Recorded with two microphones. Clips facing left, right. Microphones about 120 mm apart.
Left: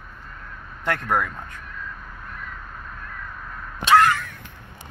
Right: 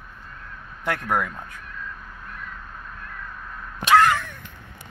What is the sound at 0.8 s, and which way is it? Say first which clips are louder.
Speech: left 1 dB; 10° right (ahead or behind).